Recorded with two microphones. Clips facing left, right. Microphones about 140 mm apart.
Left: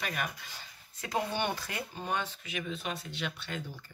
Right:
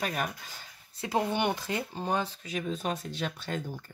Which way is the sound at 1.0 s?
30° right (ahead or behind).